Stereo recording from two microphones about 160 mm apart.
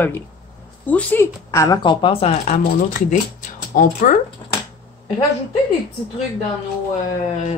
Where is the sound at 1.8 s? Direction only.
35° left (ahead or behind); by 4.1 s 55° left (ahead or behind).